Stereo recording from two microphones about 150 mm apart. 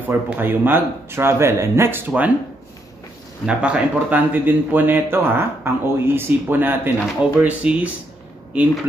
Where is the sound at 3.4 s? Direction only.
10° right (ahead or behind).